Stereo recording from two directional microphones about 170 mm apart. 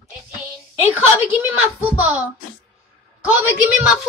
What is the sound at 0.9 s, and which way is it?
A woman's voice, 10° right (ahead or behind).